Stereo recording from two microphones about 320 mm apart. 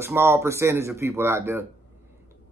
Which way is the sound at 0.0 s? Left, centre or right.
Centre.